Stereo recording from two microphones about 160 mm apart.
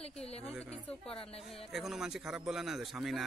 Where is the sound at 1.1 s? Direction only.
35° left (ahead or behind).